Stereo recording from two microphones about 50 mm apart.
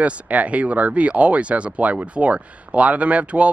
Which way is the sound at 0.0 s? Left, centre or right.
Right.